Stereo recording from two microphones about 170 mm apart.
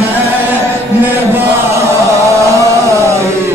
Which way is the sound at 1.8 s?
20° right (ahead or behind).